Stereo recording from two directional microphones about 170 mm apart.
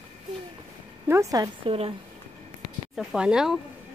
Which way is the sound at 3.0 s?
5° right (ahead or behind).